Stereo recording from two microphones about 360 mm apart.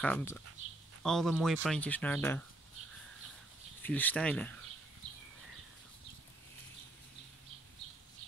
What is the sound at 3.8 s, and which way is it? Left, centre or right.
Speech, centre.